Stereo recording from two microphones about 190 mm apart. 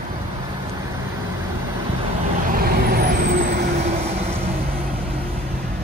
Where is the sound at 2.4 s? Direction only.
50° right (ahead or behind).